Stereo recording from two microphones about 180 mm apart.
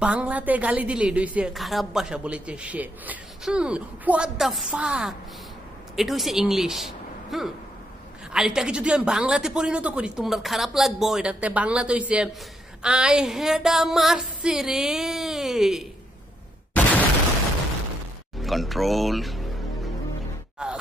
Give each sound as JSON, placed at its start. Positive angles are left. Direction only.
{"t": 0.0, "sound": "a woman's voice", "side_deg": -5}
{"t": 18.4, "sound": "music", "side_deg": 0}
{"t": 20.6, "sound": "groan", "side_deg": -5}